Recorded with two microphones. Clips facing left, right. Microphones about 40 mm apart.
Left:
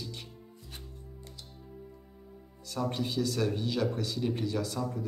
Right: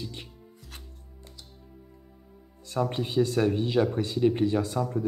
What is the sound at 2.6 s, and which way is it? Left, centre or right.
Speech, right.